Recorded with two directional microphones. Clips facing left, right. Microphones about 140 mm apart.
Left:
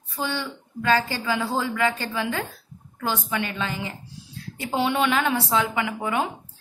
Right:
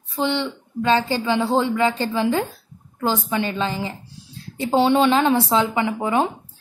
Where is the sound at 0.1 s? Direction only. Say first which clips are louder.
Right 6 dB; 25° right (ahead or behind).